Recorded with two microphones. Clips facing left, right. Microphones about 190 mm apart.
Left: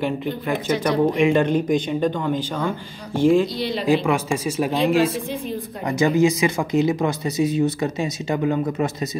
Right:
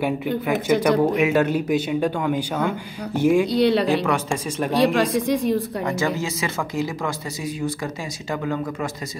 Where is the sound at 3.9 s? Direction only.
10° left (ahead or behind).